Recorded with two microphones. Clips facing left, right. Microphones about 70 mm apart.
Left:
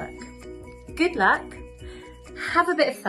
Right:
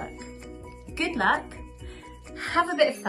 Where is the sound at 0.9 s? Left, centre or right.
Left.